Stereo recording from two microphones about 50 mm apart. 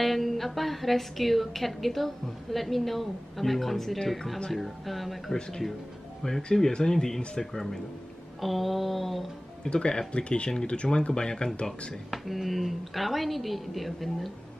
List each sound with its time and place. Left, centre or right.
0.0 s a woman's voice: centre
9.7 s speech: centre
11.9 s a woman's voice: centre